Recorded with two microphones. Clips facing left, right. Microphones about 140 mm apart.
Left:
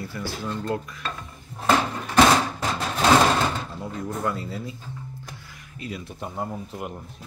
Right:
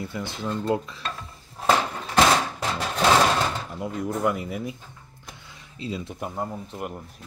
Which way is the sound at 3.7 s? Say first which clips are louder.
Right 3 dB; 15° right (ahead or behind).